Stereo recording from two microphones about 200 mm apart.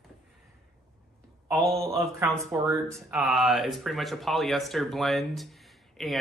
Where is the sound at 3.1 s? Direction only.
Centre (ahead or behind).